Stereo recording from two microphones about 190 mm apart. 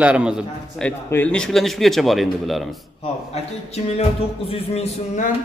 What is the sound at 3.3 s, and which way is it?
Speech, 35° left (ahead or behind).